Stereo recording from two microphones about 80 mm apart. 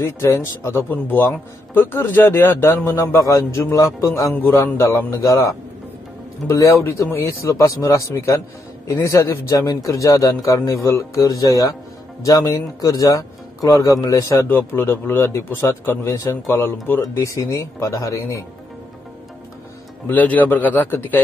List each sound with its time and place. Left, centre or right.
0.0 s a man's voice: left
0.8 s a man's voice: left
4.3 s a man's voice: left
14.5 s a man's voice: left
20.1 s a man's voice: left